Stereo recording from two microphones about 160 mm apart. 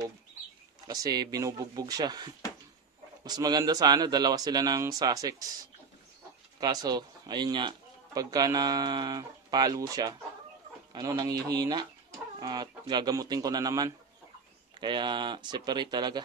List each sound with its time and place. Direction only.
0.8 s speech: 25° right (ahead or behind)
6.6 s speech: 25° right (ahead or behind)